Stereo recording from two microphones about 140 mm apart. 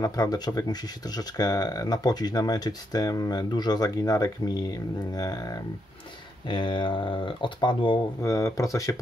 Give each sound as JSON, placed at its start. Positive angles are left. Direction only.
{"t": 0.0, "sound": "speech", "side_deg": 25}
{"t": 8.2, "sound": "speech", "side_deg": 25}